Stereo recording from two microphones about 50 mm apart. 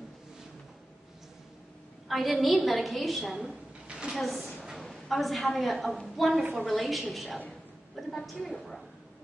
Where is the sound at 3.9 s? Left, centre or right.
Centre.